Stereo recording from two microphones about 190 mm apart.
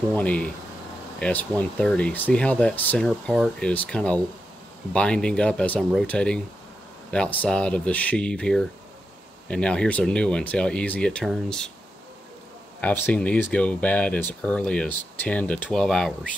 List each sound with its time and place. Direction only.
0.1 s speech: 5° left (ahead or behind)
12.8 s speech: 10° left (ahead or behind)